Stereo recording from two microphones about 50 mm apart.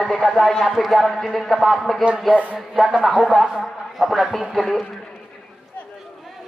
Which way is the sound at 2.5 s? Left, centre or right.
Centre.